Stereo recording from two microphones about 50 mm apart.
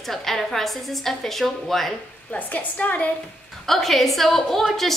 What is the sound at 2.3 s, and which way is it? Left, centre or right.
Speech, left.